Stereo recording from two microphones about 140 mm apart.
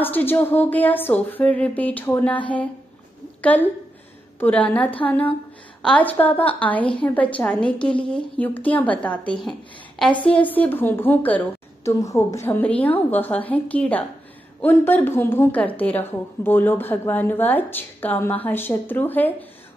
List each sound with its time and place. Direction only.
0.0 s speech: 15° left (ahead or behind)
4.4 s a woman's voice: 10° left (ahead or behind)
12.0 s a woman's voice: 25° left (ahead or behind)
12.4 s speech: 10° left (ahead or behind)